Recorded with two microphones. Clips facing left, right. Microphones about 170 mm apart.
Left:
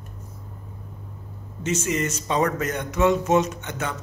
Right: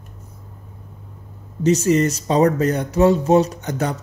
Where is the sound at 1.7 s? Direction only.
35° right (ahead or behind).